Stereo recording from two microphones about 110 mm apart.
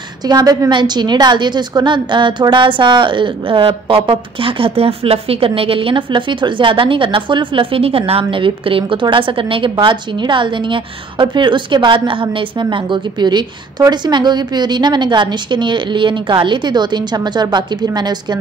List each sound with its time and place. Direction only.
0.3 s a woman's voice: 35° right (ahead or behind)